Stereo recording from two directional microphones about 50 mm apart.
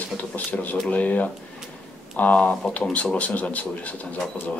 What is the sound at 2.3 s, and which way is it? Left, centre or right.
Speech, left.